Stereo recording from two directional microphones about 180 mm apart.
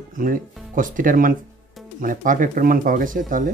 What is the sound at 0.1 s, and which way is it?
Speech, 50° right (ahead or behind).